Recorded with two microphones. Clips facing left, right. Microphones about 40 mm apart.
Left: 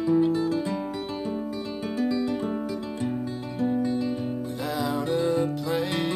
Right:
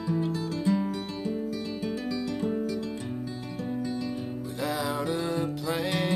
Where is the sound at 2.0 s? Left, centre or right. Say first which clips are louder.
Left 9 dB; centre.